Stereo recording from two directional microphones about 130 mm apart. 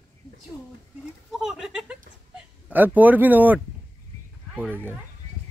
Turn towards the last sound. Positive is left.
turn(degrees=-15)  # may be behind; listen again after turning